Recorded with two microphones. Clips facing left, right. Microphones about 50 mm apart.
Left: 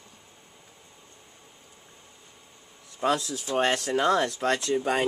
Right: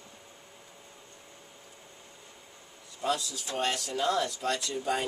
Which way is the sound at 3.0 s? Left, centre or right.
Left.